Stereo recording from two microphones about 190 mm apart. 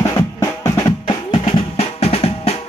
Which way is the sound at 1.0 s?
30° left (ahead or behind).